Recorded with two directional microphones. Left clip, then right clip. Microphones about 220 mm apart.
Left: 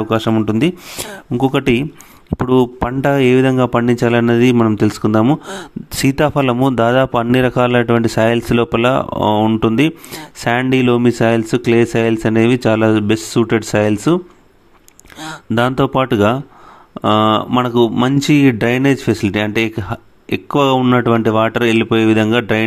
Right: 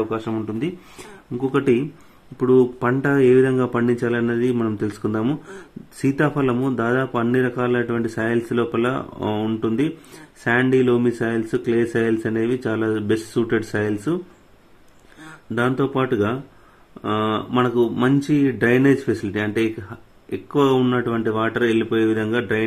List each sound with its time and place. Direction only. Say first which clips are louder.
0.1 s speech: left 10 dB; 45° left (ahead or behind)